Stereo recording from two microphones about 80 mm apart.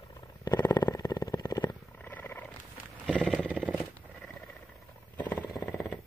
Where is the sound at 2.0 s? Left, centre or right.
Left.